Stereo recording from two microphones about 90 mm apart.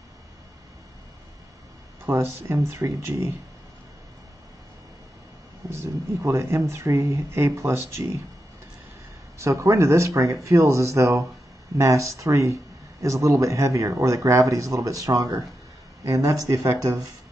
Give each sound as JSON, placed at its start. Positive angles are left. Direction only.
{"t": 2.0, "sound": "speech", "side_deg": -30}
{"t": 5.7, "sound": "speech", "side_deg": -30}
{"t": 9.4, "sound": "speech", "side_deg": -35}